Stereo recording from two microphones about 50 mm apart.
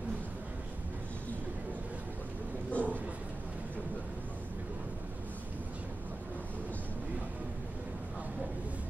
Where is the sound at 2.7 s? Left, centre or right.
Right.